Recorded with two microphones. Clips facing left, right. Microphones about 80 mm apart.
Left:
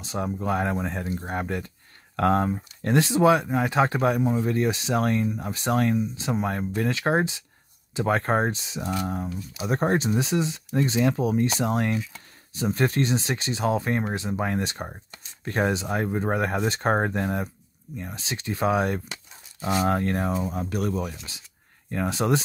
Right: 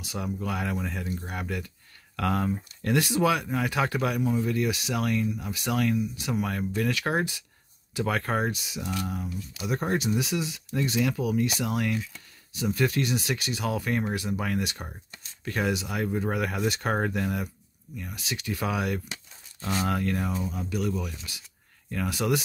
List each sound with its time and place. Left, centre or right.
0.0 s speech: left
19.6 s speech: centre
19.9 s speech: left
21.3 s speech: left